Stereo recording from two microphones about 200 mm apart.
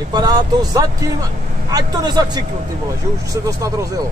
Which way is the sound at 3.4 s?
15° right (ahead or behind).